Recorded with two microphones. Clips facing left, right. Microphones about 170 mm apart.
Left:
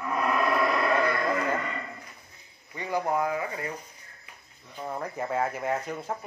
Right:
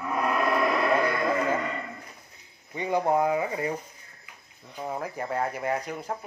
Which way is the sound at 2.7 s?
20° right (ahead or behind).